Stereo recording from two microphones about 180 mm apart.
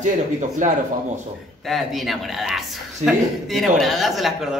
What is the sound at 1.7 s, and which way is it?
Speech, centre (ahead or behind).